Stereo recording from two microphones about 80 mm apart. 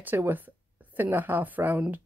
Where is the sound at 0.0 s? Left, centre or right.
Right.